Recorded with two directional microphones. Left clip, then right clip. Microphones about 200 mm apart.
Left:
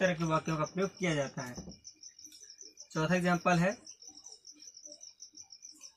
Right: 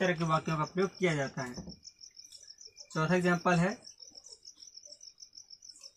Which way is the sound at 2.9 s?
20° right (ahead or behind).